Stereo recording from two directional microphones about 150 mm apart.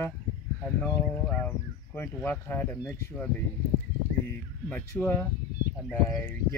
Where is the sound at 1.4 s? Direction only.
15° left (ahead or behind).